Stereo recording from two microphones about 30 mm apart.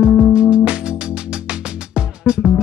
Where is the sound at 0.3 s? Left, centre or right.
Right.